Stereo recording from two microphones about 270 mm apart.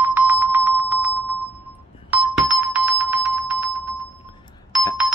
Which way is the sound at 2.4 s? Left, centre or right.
Centre.